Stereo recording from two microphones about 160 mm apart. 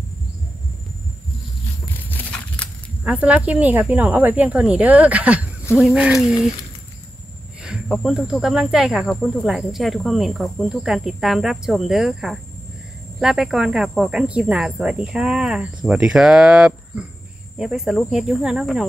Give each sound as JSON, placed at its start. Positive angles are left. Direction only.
{"t": 2.0, "sound": "a sound", "side_deg": 10}
{"t": 3.0, "sound": "speech", "side_deg": -5}
{"t": 7.9, "sound": "speech", "side_deg": 0}